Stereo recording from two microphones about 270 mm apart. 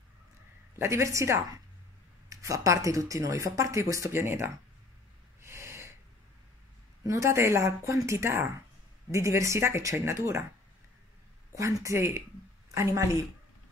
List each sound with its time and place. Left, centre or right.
0.7 s speech: centre
5.4 s snort: centre
7.1 s speech: centre
11.5 s speech: centre